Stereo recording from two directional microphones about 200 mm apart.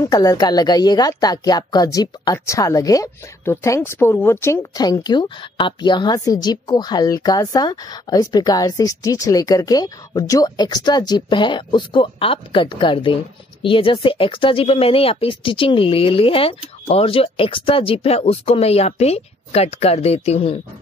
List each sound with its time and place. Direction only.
0.0 s speech: 20° left (ahead or behind)